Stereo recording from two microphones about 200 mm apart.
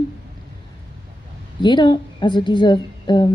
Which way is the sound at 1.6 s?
20° left (ahead or behind).